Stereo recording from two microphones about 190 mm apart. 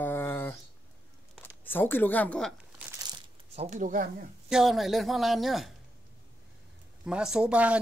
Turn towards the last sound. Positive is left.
turn(degrees=-5)  # may be behind; listen again after turning